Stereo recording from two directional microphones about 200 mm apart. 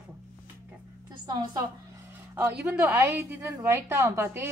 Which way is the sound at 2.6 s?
10° right (ahead or behind).